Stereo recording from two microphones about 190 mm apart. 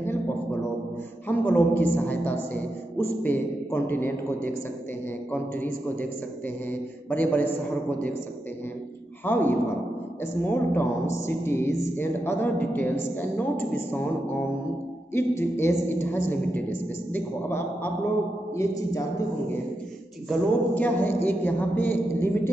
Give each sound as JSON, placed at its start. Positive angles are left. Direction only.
{"t": 1.2, "sound": "speech", "side_deg": 10}
{"t": 9.2, "sound": "speech", "side_deg": 10}
{"t": 20.2, "sound": "speech", "side_deg": 10}